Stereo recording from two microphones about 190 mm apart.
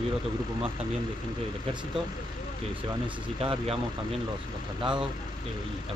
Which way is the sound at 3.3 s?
30° right (ahead or behind).